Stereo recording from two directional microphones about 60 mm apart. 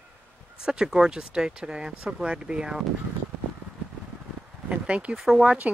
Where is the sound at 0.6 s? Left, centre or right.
Centre.